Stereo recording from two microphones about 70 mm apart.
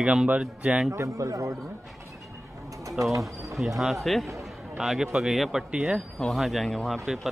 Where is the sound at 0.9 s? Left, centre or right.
Right.